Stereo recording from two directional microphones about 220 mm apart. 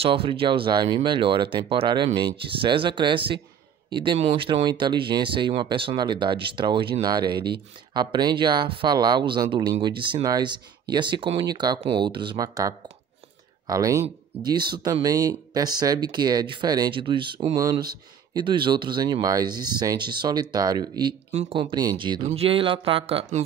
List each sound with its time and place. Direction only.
0.0 s speech: 25° right (ahead or behind)